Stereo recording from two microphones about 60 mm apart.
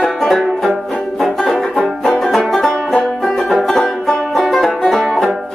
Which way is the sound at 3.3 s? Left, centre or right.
Centre.